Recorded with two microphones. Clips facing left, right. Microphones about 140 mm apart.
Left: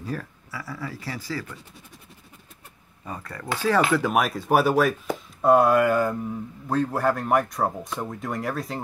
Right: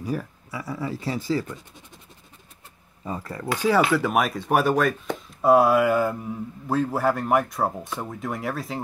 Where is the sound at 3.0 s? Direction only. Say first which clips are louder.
Right 4 dB; 25° right (ahead or behind).